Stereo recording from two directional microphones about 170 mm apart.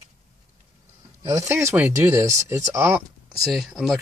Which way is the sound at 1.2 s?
20° right (ahead or behind).